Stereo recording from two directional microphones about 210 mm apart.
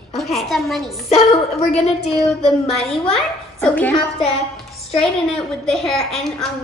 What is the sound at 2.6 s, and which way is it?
Speech, 30° left (ahead or behind).